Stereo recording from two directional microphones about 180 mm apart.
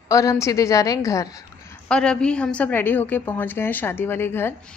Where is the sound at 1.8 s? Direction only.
5° left (ahead or behind).